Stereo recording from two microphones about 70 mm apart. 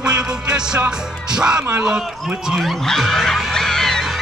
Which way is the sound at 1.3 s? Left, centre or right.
Centre.